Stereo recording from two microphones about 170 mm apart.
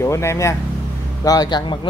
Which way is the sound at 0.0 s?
15° left (ahead or behind).